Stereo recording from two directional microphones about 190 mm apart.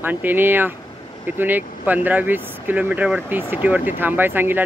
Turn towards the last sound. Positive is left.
turn(degrees=-10)  # may be behind; listen again after turning